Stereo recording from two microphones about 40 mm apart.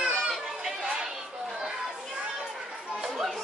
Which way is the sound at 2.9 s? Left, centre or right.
Centre.